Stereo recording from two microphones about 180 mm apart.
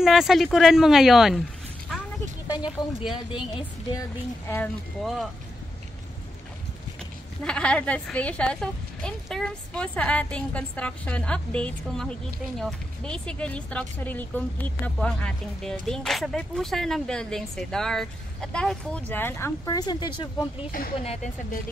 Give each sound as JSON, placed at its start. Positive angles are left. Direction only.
{"t": 0.0, "sound": "a woman's voice", "side_deg": 0}
{"t": 1.9, "sound": "a sound", "side_deg": 0}
{"t": 2.4, "sound": "a sound", "side_deg": 25}
{"t": 3.1, "sound": "a woman's voice", "side_deg": 30}
{"t": 5.0, "sound": "a woman's voice", "side_deg": 0}
{"t": 7.4, "sound": "a woman's voice", "side_deg": 5}
{"t": 21.0, "sound": "speech", "side_deg": 35}